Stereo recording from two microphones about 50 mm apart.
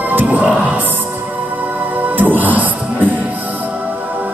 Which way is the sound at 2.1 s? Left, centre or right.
Right.